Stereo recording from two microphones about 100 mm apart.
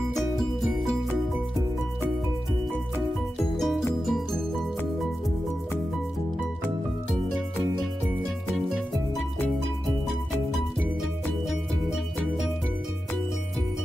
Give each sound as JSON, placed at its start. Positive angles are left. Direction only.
{"t": 3.5, "sound": "music", "side_deg": 0}